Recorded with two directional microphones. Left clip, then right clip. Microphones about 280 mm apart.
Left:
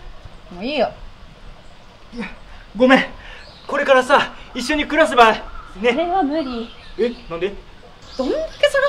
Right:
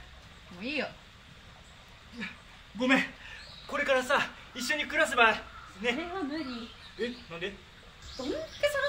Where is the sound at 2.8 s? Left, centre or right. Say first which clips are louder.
Left 14 dB; right.